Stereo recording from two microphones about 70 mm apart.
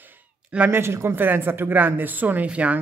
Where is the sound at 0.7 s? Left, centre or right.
Right.